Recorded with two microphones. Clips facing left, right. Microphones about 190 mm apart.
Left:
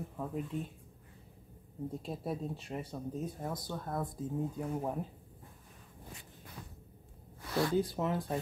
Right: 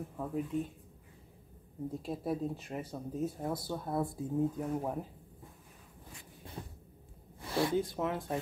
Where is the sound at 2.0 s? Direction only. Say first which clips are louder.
Right 5 dB; centre (ahead or behind).